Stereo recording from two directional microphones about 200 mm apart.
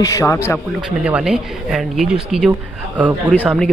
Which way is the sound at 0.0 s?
15° left (ahead or behind).